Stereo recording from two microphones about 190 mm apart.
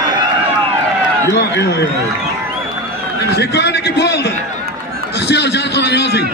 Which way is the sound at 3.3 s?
60° left (ahead or behind).